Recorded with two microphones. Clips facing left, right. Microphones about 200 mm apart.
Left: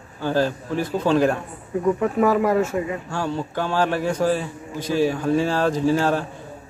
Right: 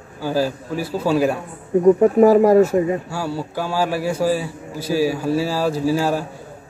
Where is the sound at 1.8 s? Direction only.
35° right (ahead or behind).